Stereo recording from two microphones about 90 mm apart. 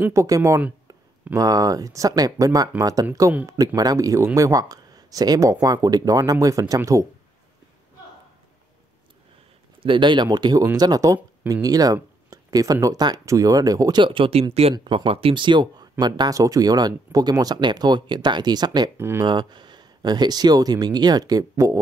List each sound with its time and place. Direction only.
0.1 s speech: 35° right (ahead or behind)
9.8 s speech: 65° right (ahead or behind); by 14.0 s 45° right (ahead or behind)
14.0 s speech: 75° right (ahead or behind)
14.5 s speech: 90° right; by 18.9 s 50° right (ahead or behind)
18.9 s speech: 30° right (ahead or behind)
19.2 s speech: 55° right (ahead or behind)